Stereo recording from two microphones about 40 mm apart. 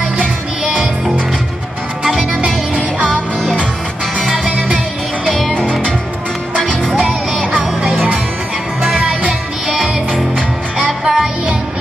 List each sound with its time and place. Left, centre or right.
0.2 s music: right
2.0 s music: right
7.0 s music: right
10.9 s music: centre